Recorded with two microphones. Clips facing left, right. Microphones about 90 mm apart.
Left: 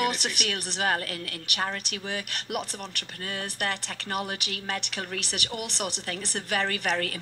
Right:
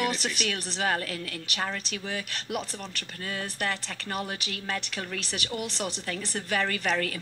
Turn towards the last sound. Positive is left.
turn(degrees=55)  # may be behind; listen again after turning